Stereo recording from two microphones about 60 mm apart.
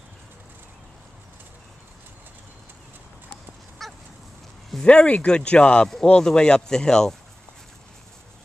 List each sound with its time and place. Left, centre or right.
3.8 s goose: centre
4.8 s speech: left